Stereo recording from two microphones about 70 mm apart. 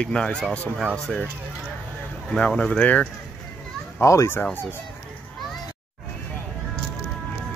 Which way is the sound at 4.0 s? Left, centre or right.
Left.